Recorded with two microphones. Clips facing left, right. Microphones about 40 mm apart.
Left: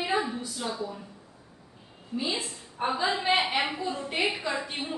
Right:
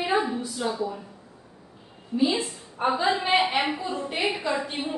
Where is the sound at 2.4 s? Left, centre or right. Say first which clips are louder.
Right 4 dB; right.